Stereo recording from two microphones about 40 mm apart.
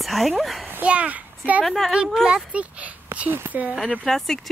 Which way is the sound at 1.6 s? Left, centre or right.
Centre.